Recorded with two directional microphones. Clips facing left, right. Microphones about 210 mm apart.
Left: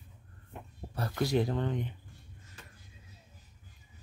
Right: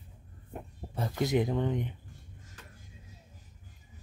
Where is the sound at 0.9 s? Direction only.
20° right (ahead or behind).